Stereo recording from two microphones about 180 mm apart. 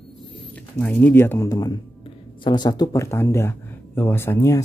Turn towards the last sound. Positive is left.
turn(degrees=15)  # may be behind; listen again after turning